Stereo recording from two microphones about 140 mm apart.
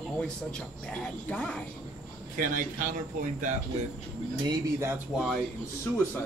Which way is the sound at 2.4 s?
75° right (ahead or behind).